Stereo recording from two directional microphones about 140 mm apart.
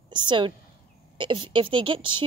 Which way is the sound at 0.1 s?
35° right (ahead or behind).